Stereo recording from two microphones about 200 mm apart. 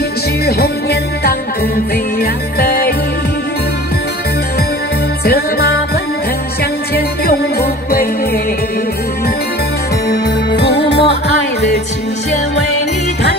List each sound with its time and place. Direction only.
0.5 s music: 50° left (ahead or behind)
2.6 s music: 50° left (ahead or behind)
5.2 s music: 50° left (ahead or behind)
10.0 s music: 55° left (ahead or behind)